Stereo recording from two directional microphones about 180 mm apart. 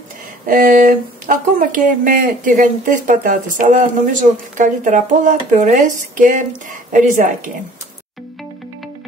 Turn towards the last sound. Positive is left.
turn(degrees=-45)  # may be behind; listen again after turning